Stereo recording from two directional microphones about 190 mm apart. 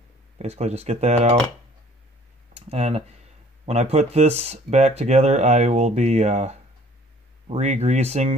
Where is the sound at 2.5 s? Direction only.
35° right (ahead or behind).